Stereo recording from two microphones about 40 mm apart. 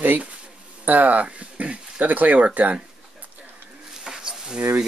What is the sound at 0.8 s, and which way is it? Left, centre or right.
Speech, right.